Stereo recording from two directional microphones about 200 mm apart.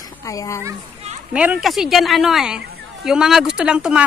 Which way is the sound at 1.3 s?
5° right (ahead or behind).